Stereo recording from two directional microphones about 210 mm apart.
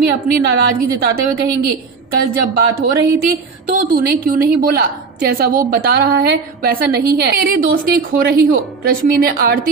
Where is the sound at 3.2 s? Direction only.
45° right (ahead or behind).